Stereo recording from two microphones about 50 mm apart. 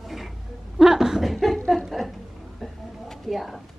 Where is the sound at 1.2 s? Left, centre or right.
Centre.